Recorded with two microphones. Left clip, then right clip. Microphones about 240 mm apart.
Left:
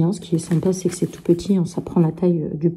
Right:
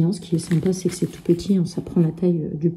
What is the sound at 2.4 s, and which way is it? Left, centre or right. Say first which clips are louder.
Speech: left 2 dB; left.